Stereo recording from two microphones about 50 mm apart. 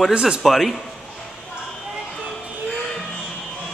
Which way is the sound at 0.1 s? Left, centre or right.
Centre.